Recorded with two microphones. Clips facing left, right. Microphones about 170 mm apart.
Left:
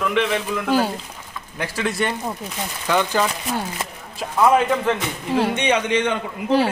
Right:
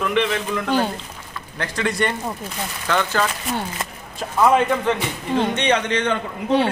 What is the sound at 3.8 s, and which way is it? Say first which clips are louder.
Speech: even; 5° left (ahead or behind).